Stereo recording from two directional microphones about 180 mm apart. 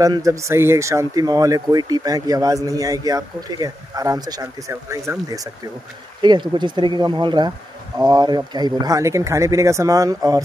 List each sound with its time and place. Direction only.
0.0 s speech: 20° right (ahead or behind)
6.2 s speech: 25° right (ahead or behind)